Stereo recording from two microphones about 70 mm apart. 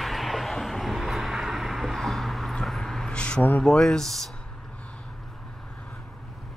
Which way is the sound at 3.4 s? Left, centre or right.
Left.